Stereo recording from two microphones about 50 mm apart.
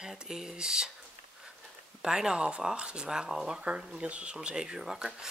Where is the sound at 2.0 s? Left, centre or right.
Centre.